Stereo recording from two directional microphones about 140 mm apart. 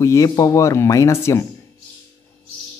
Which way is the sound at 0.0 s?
20° left (ahead or behind).